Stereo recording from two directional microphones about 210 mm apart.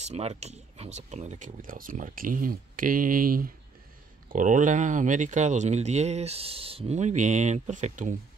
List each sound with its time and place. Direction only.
0.0 s speech: 30° right (ahead or behind)